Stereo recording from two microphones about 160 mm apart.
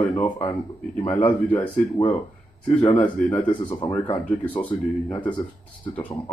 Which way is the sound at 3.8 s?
30° left (ahead or behind).